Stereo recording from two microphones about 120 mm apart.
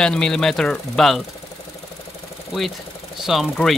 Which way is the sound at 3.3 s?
Centre (ahead or behind).